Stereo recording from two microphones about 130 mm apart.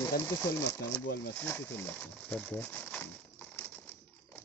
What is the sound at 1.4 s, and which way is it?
Speech, 15° left (ahead or behind).